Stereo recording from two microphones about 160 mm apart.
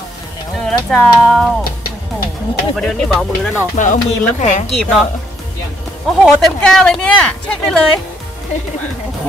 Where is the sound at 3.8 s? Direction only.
50° left (ahead or behind).